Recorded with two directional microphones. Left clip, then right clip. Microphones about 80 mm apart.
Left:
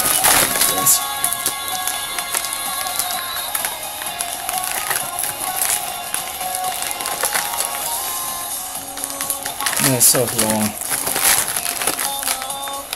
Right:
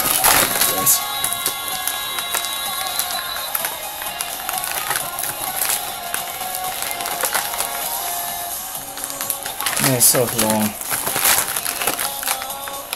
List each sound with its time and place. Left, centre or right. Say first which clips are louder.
0.2 s music: even; left
9.6 s crumpling: even; centre
11.8 s a sound: right 1 dB; centre